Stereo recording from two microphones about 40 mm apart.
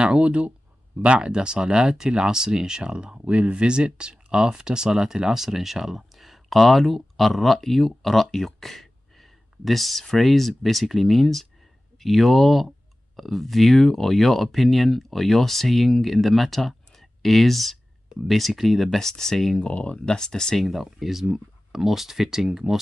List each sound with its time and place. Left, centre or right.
0.0 s speech: right; by 19.6 s centre
19.6 s speech: left
20.2 s speech: centre
20.6 s speech: centre